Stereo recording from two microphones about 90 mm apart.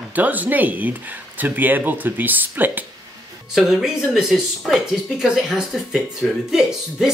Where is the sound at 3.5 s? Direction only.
5° right (ahead or behind).